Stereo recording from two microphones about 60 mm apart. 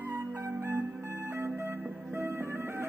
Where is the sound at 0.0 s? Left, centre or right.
Right.